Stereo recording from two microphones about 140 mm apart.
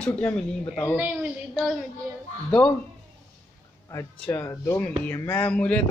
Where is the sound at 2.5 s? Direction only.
5° left (ahead or behind).